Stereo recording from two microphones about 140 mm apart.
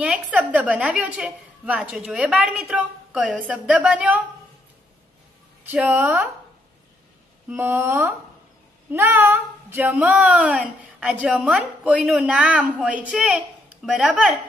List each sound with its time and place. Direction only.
0.0 s speech: 10° right (ahead or behind)
5.7 s speech: 10° right (ahead or behind)
7.4 s speech: 15° right (ahead or behind)